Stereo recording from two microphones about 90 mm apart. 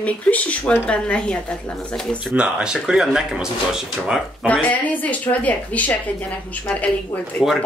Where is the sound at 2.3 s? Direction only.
10° right (ahead or behind).